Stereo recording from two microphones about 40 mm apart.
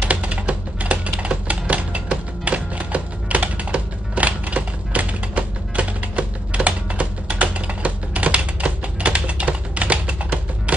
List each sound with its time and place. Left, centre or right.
0.0 s computer keyboard: right